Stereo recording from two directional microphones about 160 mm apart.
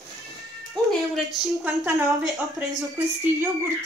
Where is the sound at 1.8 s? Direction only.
20° right (ahead or behind).